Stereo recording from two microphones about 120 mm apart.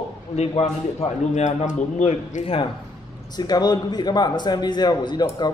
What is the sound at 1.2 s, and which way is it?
A man's voice, 85° left.